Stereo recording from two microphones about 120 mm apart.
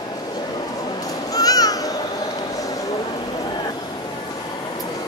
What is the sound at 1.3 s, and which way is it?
Music, 30° left (ahead or behind).